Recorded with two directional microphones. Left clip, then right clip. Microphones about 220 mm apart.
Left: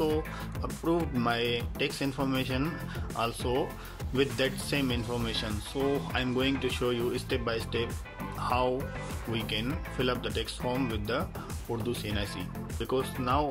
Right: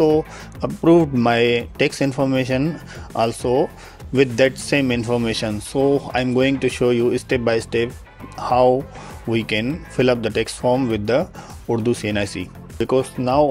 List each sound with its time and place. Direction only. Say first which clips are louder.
0.0 s speech: right 13 dB; 30° right (ahead or behind)